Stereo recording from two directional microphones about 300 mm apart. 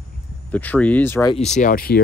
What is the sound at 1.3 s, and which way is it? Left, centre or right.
Speech, left.